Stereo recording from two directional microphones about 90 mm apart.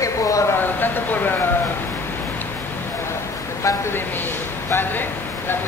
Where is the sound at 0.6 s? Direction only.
20° left (ahead or behind).